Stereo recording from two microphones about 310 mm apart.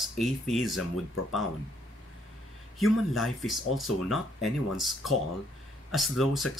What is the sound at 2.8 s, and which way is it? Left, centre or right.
Speech, centre.